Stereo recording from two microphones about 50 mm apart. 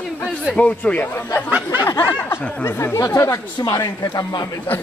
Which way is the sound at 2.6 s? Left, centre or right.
Left.